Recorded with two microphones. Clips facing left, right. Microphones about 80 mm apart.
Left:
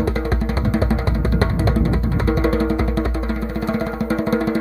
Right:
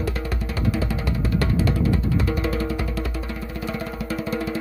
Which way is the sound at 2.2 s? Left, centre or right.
Left.